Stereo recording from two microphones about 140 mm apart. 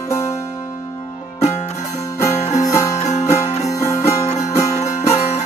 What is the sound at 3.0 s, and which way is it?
Music, 55° left (ahead or behind).